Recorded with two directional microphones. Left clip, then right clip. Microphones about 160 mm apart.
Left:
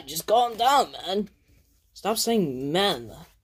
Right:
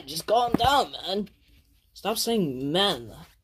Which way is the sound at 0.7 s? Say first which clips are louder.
Left 2 dB; 10° left (ahead or behind).